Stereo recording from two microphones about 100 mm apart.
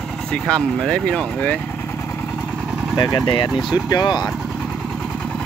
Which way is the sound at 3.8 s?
45° left (ahead or behind).